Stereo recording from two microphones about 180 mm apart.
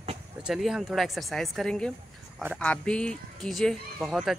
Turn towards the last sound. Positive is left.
turn(degrees=0)  # may be behind; listen again after turning